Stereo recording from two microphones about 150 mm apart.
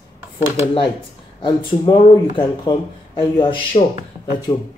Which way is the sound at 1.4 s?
35° left (ahead or behind).